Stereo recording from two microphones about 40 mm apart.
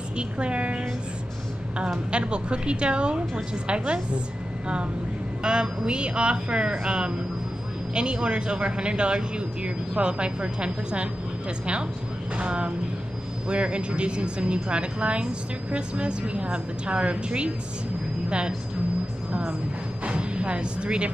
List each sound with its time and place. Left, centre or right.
0.2 s a man's voice: right
2.0 s a man's voice: right
5.4 s a man's voice: right
12.4 s a man's voice: right
20.1 s speech: right